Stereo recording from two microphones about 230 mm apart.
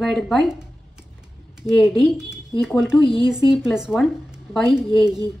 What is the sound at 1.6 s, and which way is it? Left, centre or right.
Speech, centre.